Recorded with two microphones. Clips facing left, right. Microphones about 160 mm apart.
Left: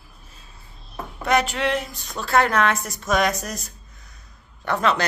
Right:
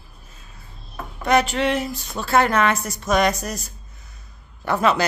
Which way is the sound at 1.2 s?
Centre (ahead or behind).